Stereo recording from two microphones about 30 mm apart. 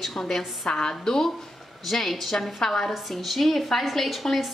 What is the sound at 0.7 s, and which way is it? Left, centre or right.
A woman's voice, left.